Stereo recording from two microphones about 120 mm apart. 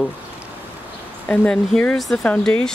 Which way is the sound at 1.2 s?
10° left (ahead or behind).